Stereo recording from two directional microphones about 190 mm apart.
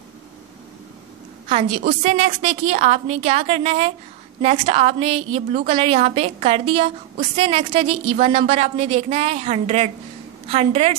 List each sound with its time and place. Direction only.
1.5 s a woman's voice: 30° right (ahead or behind)